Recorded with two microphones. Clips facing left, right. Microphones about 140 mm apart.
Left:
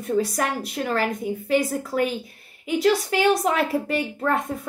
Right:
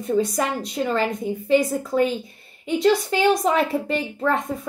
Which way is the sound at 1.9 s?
25° right (ahead or behind).